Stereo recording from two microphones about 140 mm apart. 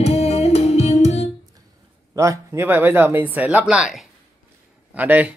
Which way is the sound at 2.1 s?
20° right (ahead or behind).